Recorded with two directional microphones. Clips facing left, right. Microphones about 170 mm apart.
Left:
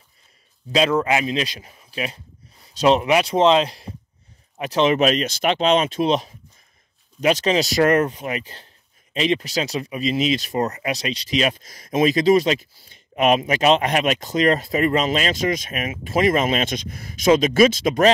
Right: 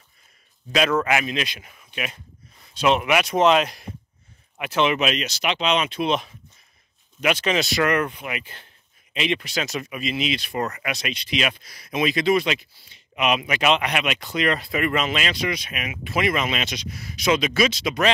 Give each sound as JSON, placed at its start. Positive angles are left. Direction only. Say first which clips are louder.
{"t": 0.7, "sound": "speech", "louder": "left 2 dB", "side_deg": 30}